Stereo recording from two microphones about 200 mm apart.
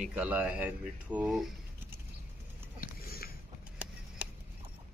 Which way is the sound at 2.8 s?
50° left (ahead or behind).